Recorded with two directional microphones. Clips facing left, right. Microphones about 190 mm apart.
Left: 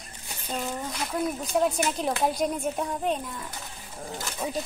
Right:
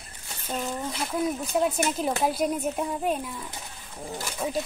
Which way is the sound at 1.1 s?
5° right (ahead or behind).